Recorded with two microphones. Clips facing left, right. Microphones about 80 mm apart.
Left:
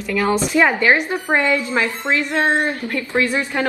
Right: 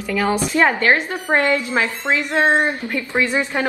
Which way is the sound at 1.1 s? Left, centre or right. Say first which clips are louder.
Even; right.